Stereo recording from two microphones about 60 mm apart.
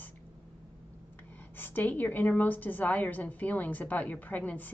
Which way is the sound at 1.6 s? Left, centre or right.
Left.